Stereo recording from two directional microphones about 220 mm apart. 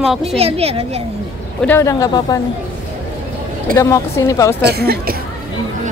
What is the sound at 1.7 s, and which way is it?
Speech, 15° left (ahead or behind).